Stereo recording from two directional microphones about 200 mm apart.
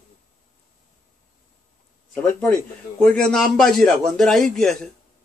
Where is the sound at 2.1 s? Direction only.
5° left (ahead or behind).